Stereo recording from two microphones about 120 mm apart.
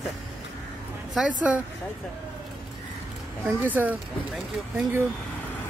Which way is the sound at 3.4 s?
15° right (ahead or behind).